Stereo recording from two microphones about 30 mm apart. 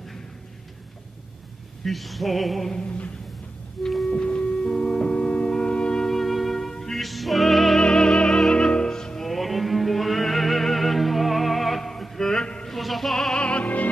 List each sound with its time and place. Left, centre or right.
1.9 s music: centre
2.8 s a sound: left
3.8 s music: centre
4.1 s music: left
6.0 s music: centre
6.7 s music: centre
7.0 s music: centre
7.8 s music: left
9.2 s music: centre
12.6 s music: centre
13.4 s music: left